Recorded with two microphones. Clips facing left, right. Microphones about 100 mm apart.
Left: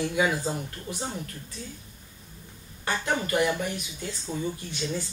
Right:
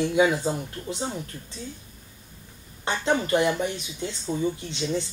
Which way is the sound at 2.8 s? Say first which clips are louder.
Right 3 dB; 25° right (ahead or behind).